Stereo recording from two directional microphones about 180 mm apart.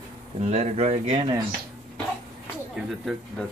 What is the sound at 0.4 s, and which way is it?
Speech, 35° right (ahead or behind).